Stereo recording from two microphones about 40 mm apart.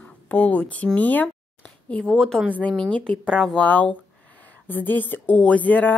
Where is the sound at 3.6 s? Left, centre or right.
Left.